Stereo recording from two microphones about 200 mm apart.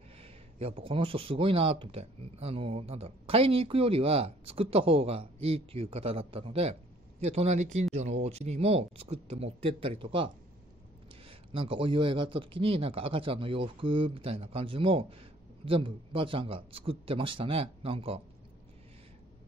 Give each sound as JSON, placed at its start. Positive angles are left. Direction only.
{"t": 0.2, "sound": "speech", "side_deg": -30}